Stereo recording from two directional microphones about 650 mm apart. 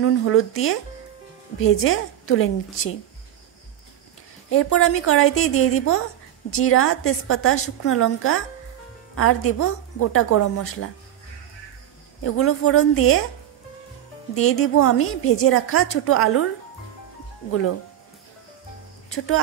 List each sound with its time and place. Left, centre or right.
0.0 s a woman's voice: centre
4.5 s a woman's voice: centre
12.2 s a woman's voice: centre
14.3 s a woman's voice: centre
17.5 s a woman's voice: centre
19.0 s speech: centre